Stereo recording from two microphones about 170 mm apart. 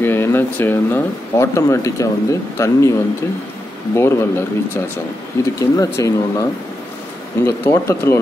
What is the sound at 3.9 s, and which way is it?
Speech, 15° left (ahead or behind).